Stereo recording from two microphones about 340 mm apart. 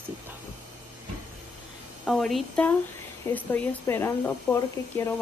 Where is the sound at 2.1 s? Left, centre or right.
Centre.